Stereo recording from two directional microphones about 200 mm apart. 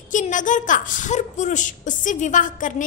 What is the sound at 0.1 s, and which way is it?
A woman's voice, 40° left (ahead or behind).